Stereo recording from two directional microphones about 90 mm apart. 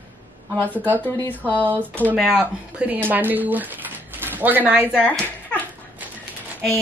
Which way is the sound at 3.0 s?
20° right (ahead or behind).